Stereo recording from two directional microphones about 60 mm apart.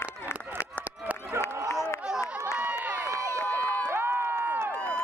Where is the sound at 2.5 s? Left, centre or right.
Right.